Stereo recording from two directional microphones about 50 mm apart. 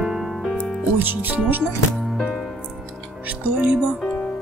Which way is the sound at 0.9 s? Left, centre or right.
Right.